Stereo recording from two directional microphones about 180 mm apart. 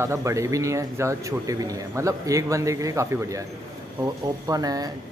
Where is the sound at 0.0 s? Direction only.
15° right (ahead or behind).